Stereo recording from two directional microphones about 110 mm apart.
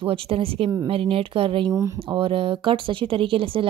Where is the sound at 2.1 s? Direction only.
55° right (ahead or behind).